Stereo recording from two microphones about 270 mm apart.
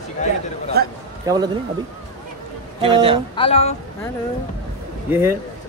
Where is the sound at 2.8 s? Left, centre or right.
Centre.